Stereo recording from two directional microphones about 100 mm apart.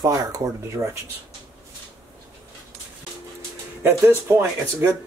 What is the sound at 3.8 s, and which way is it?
Speech, 25° right (ahead or behind).